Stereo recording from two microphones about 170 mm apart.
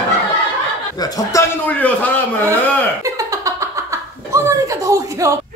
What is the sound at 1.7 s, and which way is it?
Speech, 10° left (ahead or behind).